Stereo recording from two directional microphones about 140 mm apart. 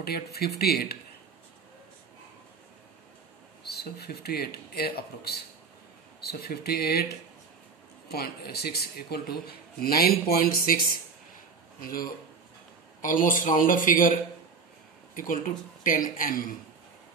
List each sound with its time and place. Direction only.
0.0 s speech: 90° left
3.8 s speech: 90° left
6.4 s speech: 90° left
8.1 s speech: 90° left
11.8 s speech: 90° left
13.0 s speech: 70° left (ahead or behind)
15.1 s speech: 75° left (ahead or behind)